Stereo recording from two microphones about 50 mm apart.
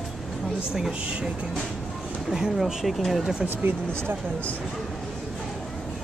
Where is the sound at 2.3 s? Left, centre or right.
Centre.